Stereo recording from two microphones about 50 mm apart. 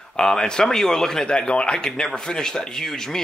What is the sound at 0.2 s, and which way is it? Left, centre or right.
A man's voice, centre.